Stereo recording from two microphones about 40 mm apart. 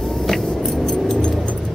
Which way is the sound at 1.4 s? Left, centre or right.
Left.